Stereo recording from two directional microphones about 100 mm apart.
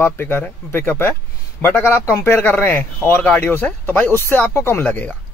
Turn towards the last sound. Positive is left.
turn(degrees=15)  # may be behind; listen again after turning